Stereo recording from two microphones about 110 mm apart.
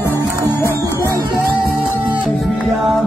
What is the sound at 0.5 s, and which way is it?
Music, 20° left (ahead or behind).